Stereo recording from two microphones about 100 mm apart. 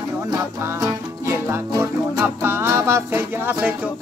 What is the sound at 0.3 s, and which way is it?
Music, 35° right (ahead or behind).